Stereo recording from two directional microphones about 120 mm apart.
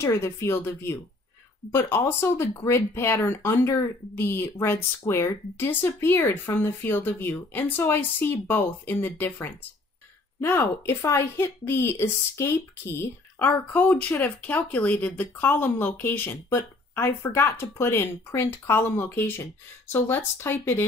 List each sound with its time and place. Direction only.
0.0 s a woman's voice: 20° left (ahead or behind)